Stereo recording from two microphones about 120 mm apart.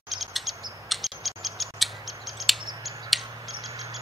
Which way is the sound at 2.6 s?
30° right (ahead or behind).